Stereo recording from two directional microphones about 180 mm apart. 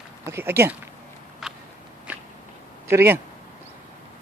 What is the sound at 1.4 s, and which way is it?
Walk, centre (ahead or behind).